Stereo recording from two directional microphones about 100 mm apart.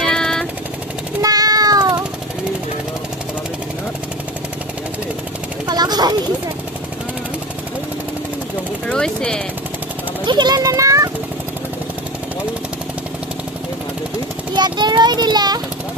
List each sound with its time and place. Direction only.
0.0 s jackhammer: 5° left (ahead or behind)
1.2 s child singing: 40° right (ahead or behind)
5.7 s a sound: 45° right (ahead or behind)
8.8 s speech: 10° left (ahead or behind)
10.2 s a child's voice: 50° right (ahead or behind); by 11.1 s 35° right (ahead or behind)
14.5 s a sound: 50° right (ahead or behind)